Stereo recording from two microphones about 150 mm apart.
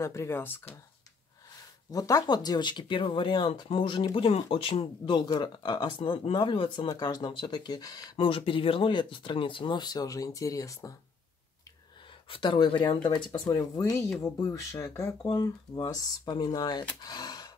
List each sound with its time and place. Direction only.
0.0 s speech: 20° left (ahead or behind)
1.9 s speech: 25° left (ahead or behind)
12.3 s speech: 35° left (ahead or behind)